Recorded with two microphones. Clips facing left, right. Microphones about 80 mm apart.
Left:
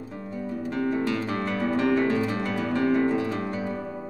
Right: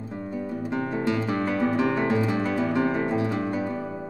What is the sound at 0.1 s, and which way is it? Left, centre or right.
Guitar, centre.